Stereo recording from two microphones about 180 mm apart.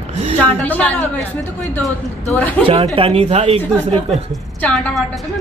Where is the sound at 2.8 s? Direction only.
30° right (ahead or behind).